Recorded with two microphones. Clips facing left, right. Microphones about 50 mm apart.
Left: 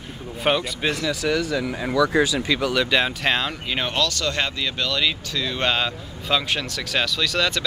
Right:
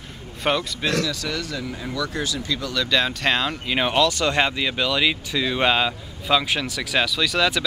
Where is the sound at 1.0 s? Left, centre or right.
Centre.